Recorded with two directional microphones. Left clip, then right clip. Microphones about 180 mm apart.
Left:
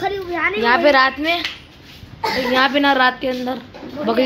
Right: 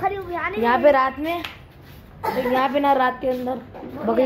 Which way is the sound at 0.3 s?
50° left (ahead or behind).